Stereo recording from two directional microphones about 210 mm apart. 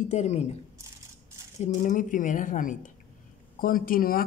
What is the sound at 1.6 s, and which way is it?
Speech, 40° left (ahead or behind).